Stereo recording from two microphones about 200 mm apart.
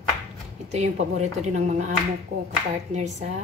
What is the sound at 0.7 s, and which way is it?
Speech, 35° right (ahead or behind).